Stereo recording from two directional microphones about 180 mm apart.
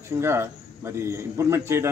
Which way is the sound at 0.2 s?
15° right (ahead or behind).